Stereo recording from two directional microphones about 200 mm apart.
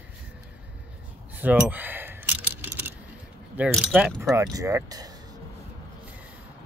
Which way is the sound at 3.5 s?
5° right (ahead or behind).